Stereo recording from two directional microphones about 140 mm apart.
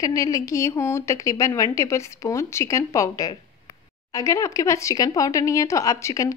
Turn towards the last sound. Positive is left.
turn(degrees=25)  # may be behind; listen again after turning